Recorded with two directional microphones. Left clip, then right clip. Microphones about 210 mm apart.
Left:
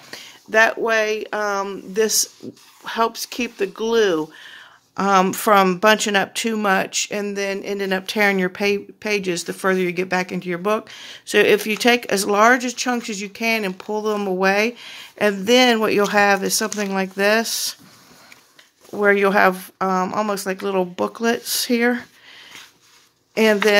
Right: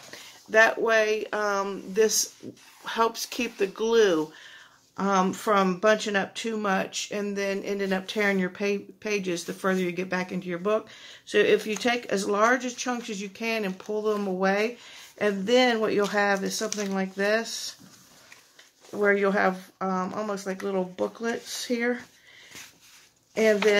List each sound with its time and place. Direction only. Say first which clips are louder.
0.1 s speech: left 4 dB; 35° left (ahead or behind)
18.9 s speech: left 7 dB; 40° left (ahead or behind)
23.3 s speech: left 6 dB; 35° left (ahead or behind)